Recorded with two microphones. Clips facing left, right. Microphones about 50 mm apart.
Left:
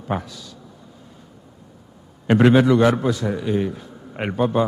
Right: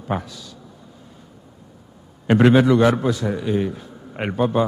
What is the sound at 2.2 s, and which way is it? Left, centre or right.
A man's voice, right.